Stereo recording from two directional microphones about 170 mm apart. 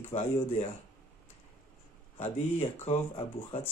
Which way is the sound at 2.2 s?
35° left (ahead or behind).